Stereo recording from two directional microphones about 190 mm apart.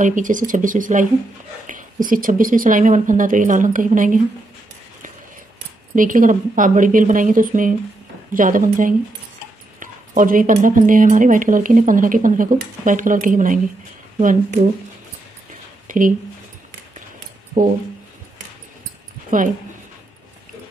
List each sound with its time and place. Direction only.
0.0 s speech: 45° right (ahead or behind)
5.9 s speech: 45° right (ahead or behind)
15.9 s speech: 45° right (ahead or behind)